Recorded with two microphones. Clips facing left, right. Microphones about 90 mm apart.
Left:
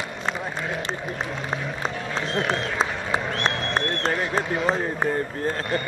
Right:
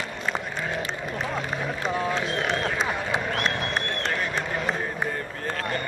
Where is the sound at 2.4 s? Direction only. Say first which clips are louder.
Left 1 dB; 35° left (ahead or behind).